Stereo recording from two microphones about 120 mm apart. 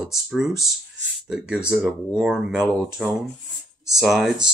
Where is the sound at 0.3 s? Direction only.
5° right (ahead or behind).